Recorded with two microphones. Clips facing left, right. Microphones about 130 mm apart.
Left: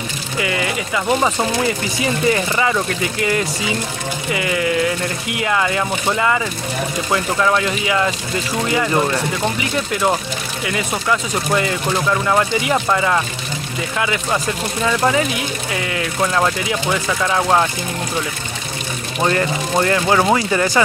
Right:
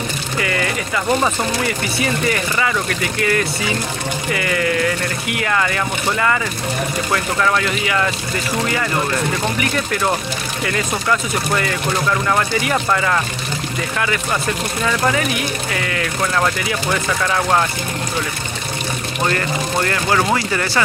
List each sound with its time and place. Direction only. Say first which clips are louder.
0.4 s speech: left 1 dB; 20° left (ahead or behind)
12.3 s speech: left 1 dB; 20° left (ahead or behind)
19.2 s speech: left 3 dB; 20° left (ahead or behind)